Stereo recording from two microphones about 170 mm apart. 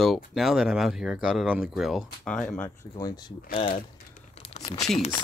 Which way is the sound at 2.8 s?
20° left (ahead or behind).